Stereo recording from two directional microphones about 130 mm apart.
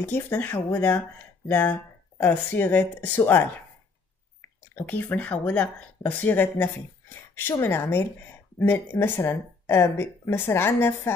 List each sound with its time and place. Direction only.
0.0 s speech: 15° left (ahead or behind)
4.7 s speech: 15° left (ahead or behind)